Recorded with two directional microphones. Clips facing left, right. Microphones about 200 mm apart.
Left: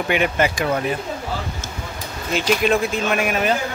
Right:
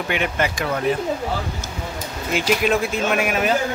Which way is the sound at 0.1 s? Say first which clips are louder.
Left 4 dB; 10° left (ahead or behind).